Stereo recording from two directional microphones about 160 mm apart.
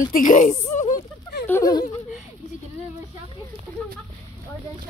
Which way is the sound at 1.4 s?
20° left (ahead or behind).